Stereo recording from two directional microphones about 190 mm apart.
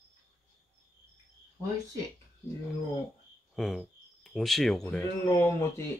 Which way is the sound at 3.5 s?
Centre (ahead or behind).